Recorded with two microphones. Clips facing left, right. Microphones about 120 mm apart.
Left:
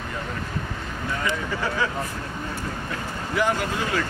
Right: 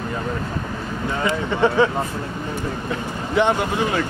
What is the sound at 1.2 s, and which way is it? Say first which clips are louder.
Speech: right 9 dB; 25° right (ahead or behind).